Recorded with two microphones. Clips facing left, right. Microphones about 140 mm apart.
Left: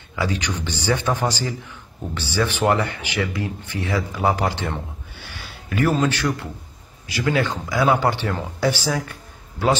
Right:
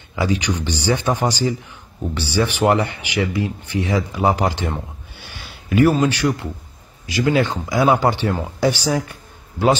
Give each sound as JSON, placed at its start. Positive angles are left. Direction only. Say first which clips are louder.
{"t": 0.1, "sound": "a man's voice", "louder": "right 4 dB", "side_deg": -15}